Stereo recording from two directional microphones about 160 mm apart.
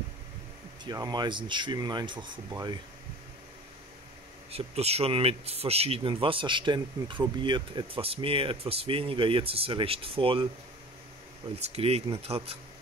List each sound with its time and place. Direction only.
0.8 s speech: 25° right (ahead or behind)
4.5 s speech: 40° right (ahead or behind)
11.4 s speech: 40° right (ahead or behind)